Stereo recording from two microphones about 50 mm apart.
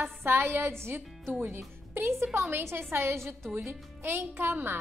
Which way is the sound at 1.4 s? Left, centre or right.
Right.